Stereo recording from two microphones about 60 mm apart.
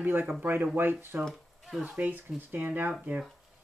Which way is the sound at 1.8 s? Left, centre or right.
Right.